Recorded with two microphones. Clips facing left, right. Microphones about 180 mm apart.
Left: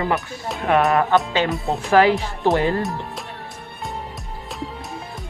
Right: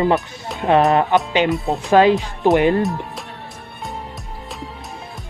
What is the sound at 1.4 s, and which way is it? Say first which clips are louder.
Speech: right 3 dB; centre (ahead or behind).